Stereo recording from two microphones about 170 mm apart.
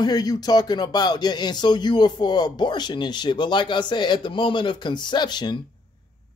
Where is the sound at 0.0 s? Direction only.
25° left (ahead or behind).